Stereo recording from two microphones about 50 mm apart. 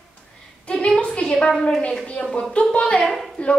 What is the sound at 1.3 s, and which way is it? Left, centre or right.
A woman's voice, centre.